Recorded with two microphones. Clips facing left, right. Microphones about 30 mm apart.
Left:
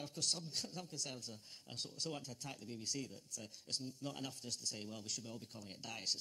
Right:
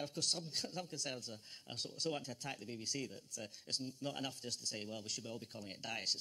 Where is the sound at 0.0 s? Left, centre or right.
Right.